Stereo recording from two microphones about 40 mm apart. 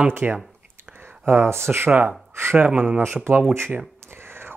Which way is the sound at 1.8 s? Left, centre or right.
Right.